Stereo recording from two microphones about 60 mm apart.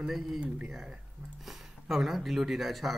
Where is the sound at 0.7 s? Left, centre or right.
Centre.